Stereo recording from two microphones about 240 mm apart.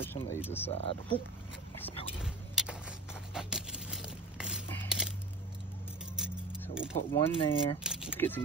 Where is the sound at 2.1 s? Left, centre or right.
Centre.